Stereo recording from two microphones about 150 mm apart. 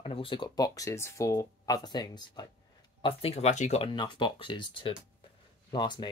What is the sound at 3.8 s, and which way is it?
Speech, 30° left (ahead or behind).